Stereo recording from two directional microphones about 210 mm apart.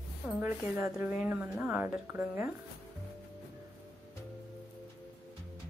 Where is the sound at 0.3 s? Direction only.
10° right (ahead or behind).